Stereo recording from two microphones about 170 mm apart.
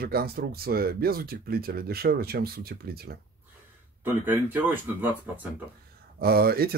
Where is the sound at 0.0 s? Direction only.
65° right (ahead or behind).